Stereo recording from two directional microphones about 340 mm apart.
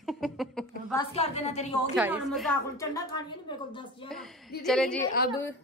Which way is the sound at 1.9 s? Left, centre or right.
Centre.